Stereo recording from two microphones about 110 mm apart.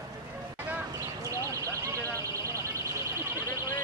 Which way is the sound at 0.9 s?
30° right (ahead or behind).